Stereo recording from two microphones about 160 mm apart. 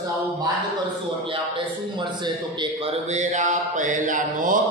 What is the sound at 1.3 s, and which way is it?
A man's voice, 30° right (ahead or behind).